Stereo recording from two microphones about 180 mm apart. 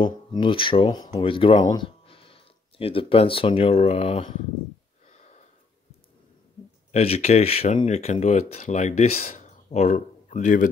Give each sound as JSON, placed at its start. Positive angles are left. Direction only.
{"t": 0.0, "sound": "speech", "side_deg": 30}
{"t": 5.1, "sound": "sniff", "side_deg": 40}
{"t": 6.9, "sound": "speech", "side_deg": 35}
{"t": 9.2, "sound": "a sound", "side_deg": 50}
{"t": 9.7, "sound": "speech", "side_deg": 40}